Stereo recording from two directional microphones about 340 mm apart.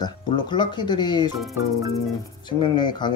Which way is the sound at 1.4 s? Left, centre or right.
Centre.